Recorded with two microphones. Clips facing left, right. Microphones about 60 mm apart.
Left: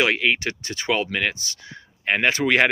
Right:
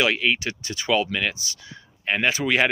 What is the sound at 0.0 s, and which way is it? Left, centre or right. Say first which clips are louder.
Speech: left 1 dB; left.